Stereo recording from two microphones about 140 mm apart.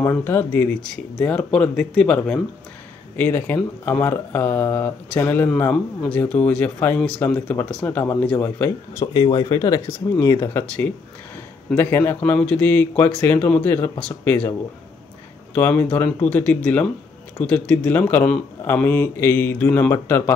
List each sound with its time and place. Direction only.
0.0 s speech: 15° left (ahead or behind)
9.0 s speech: 30° left (ahead or behind)
9.9 s speech: 15° left (ahead or behind)
15.5 s speech: 10° left (ahead or behind)